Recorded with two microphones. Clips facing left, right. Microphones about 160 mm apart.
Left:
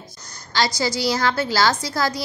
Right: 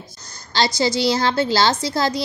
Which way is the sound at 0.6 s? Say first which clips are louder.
Right 3 dB; 25° right (ahead or behind).